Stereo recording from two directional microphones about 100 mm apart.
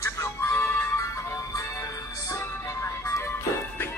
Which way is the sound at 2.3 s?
25° left (ahead or behind).